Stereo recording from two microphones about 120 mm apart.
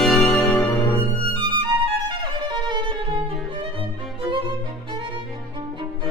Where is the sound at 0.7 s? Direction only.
25° left (ahead or behind).